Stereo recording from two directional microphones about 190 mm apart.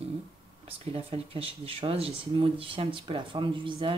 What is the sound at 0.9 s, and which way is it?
Speech, 30° right (ahead or behind).